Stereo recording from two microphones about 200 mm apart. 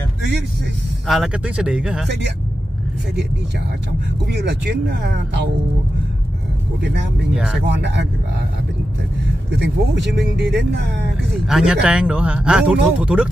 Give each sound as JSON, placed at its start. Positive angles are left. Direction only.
{"t": 1.0, "sound": "speech", "side_deg": 0}
{"t": 4.3, "sound": "speech", "side_deg": -55}
{"t": 6.8, "sound": "speech", "side_deg": -60}
{"t": 7.3, "sound": "speech", "side_deg": -5}
{"t": 7.6, "sound": "speech", "side_deg": -60}
{"t": 9.5, "sound": "speech", "side_deg": -60}
{"t": 11.4, "sound": "speech", "side_deg": -5}